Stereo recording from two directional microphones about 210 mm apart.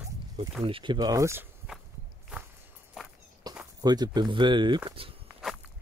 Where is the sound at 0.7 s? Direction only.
25° right (ahead or behind).